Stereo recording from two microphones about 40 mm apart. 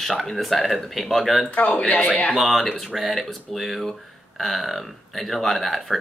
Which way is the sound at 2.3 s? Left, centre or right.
Centre.